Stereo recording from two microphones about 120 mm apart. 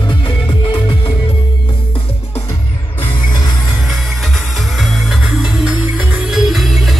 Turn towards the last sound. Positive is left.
turn(degrees=0)  # may be behind; listen again after turning